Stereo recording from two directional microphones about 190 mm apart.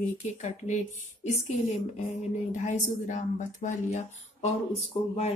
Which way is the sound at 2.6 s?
40° left (ahead or behind).